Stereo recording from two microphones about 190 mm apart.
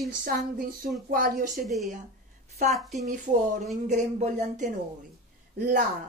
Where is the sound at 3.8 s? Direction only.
40° right (ahead or behind).